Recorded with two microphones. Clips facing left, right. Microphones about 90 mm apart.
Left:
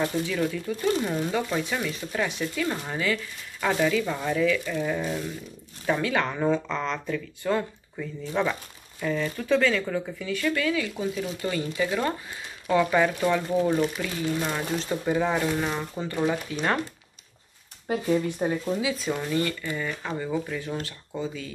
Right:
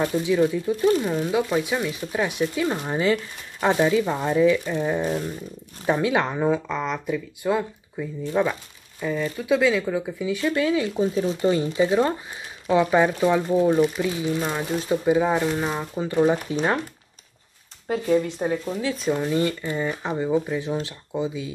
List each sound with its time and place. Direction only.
0.0 s speech: 15° right (ahead or behind)
18.4 s speech: 5° right (ahead or behind)
19.1 s speech: 20° right (ahead or behind)